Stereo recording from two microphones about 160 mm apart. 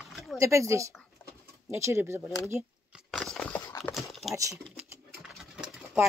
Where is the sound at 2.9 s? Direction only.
Centre (ahead or behind).